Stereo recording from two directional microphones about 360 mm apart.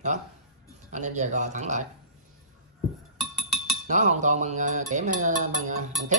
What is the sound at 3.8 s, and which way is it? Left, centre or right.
Speech, centre.